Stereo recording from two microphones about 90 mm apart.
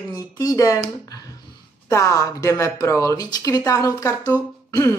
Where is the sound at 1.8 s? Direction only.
35° left (ahead or behind).